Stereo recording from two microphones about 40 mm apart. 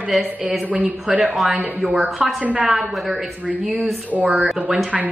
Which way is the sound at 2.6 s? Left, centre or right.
Centre.